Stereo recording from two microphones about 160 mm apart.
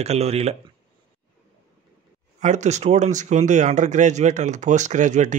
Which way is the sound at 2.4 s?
45° right (ahead or behind).